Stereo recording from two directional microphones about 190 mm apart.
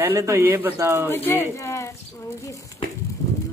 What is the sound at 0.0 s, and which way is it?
Speech, 15° right (ahead or behind).